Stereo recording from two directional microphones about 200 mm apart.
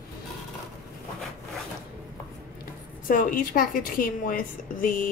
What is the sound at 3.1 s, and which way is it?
A woman's voice, 45° left (ahead or behind).